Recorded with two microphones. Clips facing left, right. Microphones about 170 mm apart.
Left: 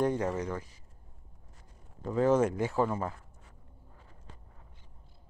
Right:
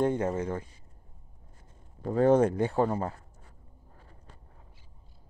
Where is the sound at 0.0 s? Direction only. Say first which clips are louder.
Right 2 dB; 25° right (ahead or behind).